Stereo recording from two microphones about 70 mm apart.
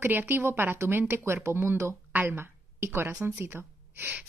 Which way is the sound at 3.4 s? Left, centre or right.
Right.